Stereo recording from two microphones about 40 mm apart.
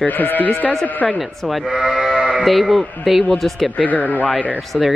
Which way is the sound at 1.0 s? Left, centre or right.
Left.